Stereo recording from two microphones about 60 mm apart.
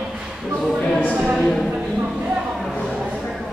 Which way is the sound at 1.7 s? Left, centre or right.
Centre.